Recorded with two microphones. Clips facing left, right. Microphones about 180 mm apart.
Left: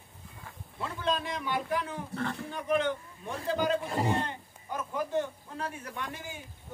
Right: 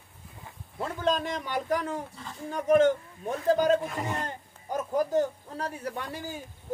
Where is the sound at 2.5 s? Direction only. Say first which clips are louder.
Right 9 dB; 45° right (ahead or behind).